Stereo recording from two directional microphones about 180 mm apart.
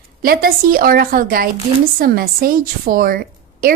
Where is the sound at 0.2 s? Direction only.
55° right (ahead or behind).